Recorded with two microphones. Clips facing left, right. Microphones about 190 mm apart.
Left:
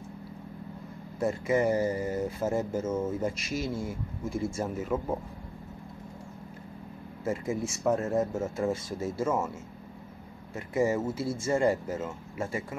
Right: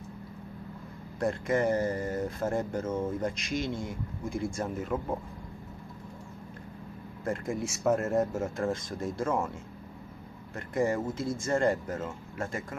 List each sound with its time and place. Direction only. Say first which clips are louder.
1.2 s speech: left 1 dB; 10° left (ahead or behind)
7.2 s speech: left 1 dB; 5° left (ahead or behind)
10.5 s speech: left 2 dB; 5° left (ahead or behind)